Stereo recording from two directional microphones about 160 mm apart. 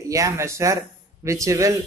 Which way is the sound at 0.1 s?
20° right (ahead or behind).